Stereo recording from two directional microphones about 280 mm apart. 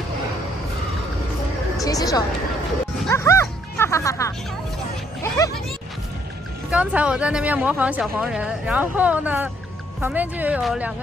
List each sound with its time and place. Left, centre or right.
1.8 s a woman's voice: centre
6.7 s speech: centre